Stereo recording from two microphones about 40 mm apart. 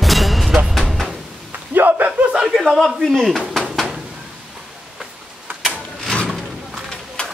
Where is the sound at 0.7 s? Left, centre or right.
Centre.